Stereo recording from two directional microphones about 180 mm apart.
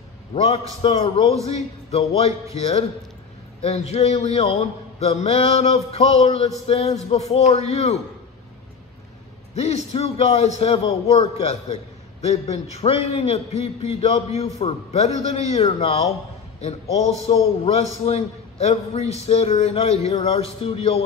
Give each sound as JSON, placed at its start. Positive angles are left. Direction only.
{"t": 0.3, "sound": "a man's voice", "side_deg": 35}
{"t": 3.6, "sound": "a man's voice", "side_deg": 35}
{"t": 9.6, "sound": "a man's voice", "side_deg": 35}